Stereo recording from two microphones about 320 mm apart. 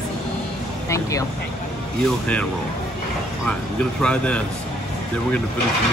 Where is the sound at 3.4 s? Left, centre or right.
Centre.